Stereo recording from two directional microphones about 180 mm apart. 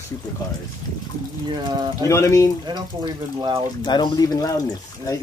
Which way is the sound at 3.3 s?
25° right (ahead or behind).